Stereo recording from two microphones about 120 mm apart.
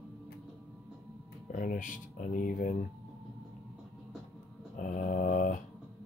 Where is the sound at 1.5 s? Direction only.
90° left.